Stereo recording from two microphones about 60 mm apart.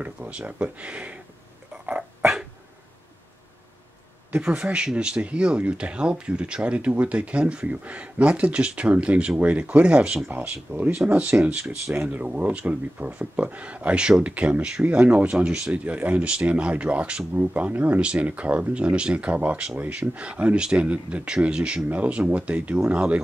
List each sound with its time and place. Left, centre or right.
0.0 s speech: right
1.7 s a sound: centre
4.3 s speech: centre